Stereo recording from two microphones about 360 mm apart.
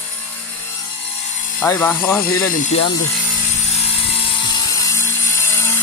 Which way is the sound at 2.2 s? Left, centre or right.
Left.